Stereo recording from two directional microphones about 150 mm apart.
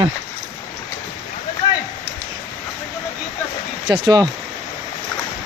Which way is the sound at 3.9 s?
25° right (ahead or behind).